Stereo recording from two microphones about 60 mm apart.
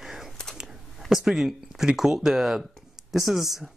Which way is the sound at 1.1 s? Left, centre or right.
Centre.